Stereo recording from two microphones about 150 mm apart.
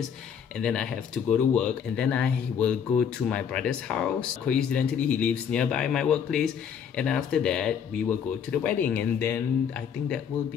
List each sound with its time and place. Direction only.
0.6 s speech: 5° left (ahead or behind)